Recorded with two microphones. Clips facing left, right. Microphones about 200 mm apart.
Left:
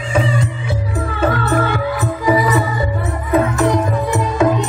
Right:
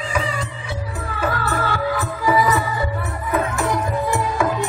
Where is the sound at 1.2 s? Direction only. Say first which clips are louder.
Left 6 dB; 20° left (ahead or behind).